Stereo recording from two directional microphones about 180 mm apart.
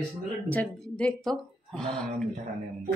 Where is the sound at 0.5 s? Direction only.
5° left (ahead or behind).